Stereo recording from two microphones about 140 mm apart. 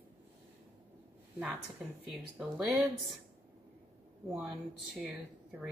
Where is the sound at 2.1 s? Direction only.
Centre (ahead or behind).